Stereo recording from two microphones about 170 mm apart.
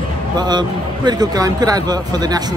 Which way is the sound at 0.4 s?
25° right (ahead or behind).